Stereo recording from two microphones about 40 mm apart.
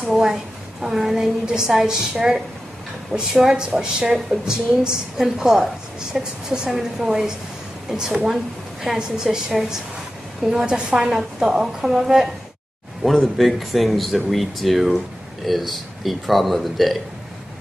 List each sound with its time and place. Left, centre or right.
0.0 s a sound: centre
1.4 s a woman's voice: centre
3.2 s a woman's voice: centre